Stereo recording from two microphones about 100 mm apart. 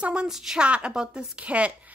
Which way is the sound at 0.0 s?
10° right (ahead or behind).